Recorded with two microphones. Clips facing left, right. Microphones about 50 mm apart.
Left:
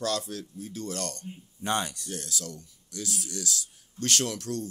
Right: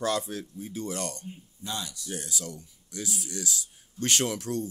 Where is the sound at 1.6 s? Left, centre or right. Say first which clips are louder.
Left 7 dB; left.